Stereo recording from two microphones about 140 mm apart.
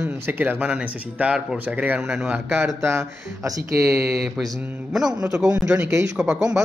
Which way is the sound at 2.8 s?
20° right (ahead or behind).